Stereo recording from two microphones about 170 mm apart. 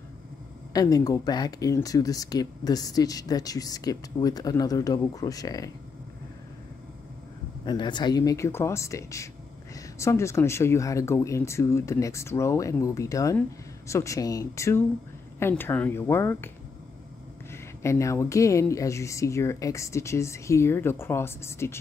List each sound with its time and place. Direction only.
0.7 s speech: 20° left (ahead or behind)
7.6 s speech: 25° left (ahead or behind)
17.5 s speech: 15° left (ahead or behind)